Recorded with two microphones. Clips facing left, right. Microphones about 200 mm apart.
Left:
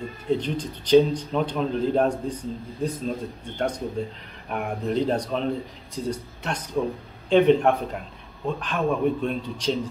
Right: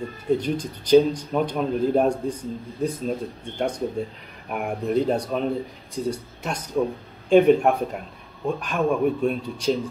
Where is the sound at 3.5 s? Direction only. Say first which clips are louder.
Right 2 dB; 10° right (ahead or behind).